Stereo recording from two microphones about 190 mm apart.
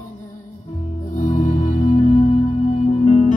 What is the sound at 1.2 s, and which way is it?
Music, 40° left (ahead or behind).